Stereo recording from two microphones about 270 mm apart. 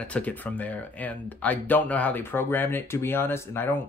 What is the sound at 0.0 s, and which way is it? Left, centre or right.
Speech, centre.